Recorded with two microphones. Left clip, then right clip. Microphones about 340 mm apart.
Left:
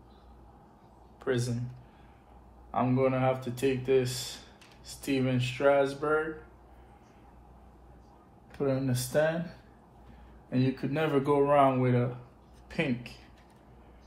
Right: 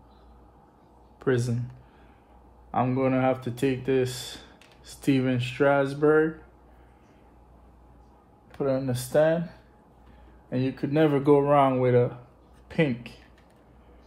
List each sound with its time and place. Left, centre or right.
1.2 s speech: right
2.7 s speech: right
8.5 s speech: right
10.5 s speech: right